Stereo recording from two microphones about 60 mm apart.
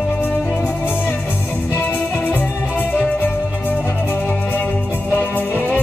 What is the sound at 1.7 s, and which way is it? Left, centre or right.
Music, left.